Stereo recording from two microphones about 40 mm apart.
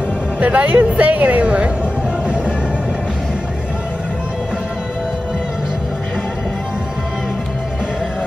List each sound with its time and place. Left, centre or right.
0.4 s speech: right